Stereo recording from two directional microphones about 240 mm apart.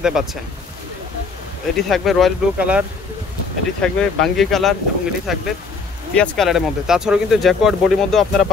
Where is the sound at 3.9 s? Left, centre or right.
Centre.